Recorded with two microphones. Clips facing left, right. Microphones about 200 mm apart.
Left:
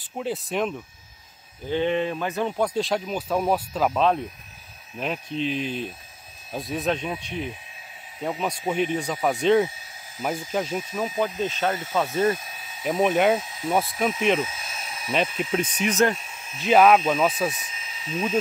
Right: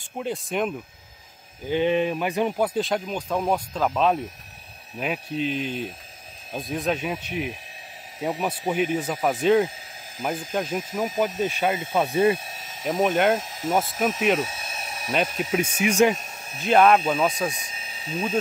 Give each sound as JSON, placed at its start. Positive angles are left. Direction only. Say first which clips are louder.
{"t": 0.2, "sound": "speech", "louder": "even", "side_deg": 0}
{"t": 1.7, "sound": "speech", "louder": "right 2 dB", "side_deg": -15}
{"t": 4.9, "sound": "speech", "louder": "right 1 dB", "side_deg": -5}
{"t": 12.8, "sound": "speech", "louder": "left 1 dB", "side_deg": 0}
{"t": 15.5, "sound": "speech", "louder": "right 3 dB", "side_deg": -10}
{"t": 16.2, "sound": "a sound", "louder": "right 2 dB", "side_deg": -40}
{"t": 16.6, "sound": "speech", "louder": "left 1 dB", "side_deg": 5}
{"t": 17.6, "sound": "a sound", "louder": "right 1 dB", "side_deg": -35}